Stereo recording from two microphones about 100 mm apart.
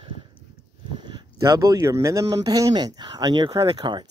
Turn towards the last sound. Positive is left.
turn(degrees=-65)  # may be behind; listen again after turning